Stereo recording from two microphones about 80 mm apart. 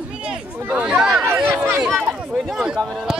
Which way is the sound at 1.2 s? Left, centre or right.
Right.